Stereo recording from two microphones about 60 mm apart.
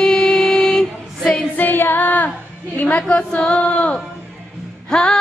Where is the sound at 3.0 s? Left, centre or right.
Centre.